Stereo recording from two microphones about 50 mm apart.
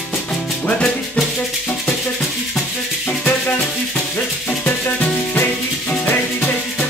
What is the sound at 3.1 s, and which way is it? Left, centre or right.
Music, left.